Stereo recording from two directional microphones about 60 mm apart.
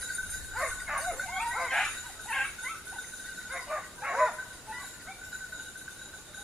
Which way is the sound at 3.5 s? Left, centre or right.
Centre.